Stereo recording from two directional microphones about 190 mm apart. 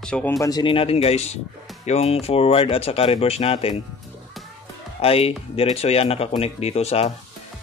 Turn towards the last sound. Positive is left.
turn(degrees=30)  # may be behind; listen again after turning